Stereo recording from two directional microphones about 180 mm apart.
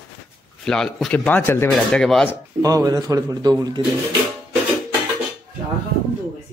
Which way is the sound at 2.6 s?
20° right (ahead or behind).